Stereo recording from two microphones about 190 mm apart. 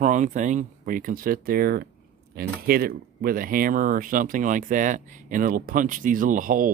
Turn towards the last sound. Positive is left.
turn(degrees=-45)  # may be behind; listen again after turning